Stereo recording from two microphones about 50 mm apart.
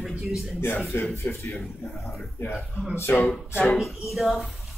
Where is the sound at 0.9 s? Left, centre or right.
Left.